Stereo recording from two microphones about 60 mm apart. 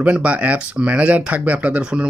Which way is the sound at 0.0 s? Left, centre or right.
Right.